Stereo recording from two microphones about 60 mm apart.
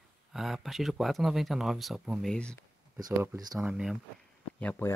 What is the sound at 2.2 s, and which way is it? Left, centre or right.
Speech, centre.